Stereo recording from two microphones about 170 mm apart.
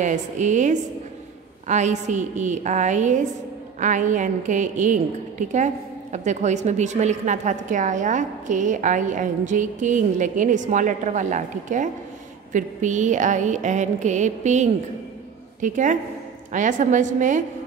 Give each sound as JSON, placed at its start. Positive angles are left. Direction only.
{"t": 0.0, "sound": "a woman's voice", "side_deg": -45}
{"t": 6.1, "sound": "a woman's voice", "side_deg": -45}